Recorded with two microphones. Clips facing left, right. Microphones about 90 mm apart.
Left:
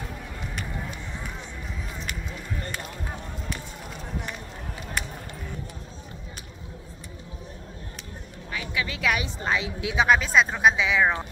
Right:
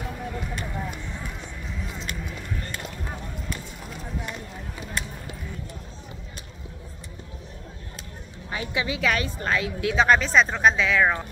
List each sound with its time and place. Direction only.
8.5 s a sound: 30° right (ahead or behind)
8.8 s a woman's voice: 5° right (ahead or behind)
9.1 s a woman's voice: 15° left (ahead or behind)
10.0 s speech: 5° left (ahead or behind)